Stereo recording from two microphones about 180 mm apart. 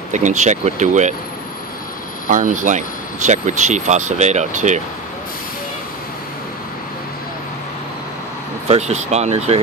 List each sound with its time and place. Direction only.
0.1 s speech: 45° right (ahead or behind)
2.2 s speech: 45° right (ahead or behind)
8.6 s speech: 35° right (ahead or behind)